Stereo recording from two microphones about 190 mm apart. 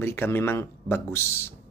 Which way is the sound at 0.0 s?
10° left (ahead or behind).